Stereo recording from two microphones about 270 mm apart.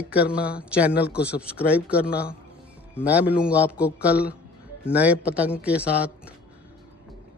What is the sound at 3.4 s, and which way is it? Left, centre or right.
A man's voice, centre.